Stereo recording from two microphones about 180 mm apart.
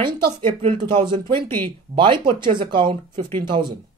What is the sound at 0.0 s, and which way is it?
Speech, 30° right (ahead or behind).